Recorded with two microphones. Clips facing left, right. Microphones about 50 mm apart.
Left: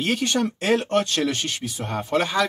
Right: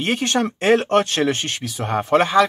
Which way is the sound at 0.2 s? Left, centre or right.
Right.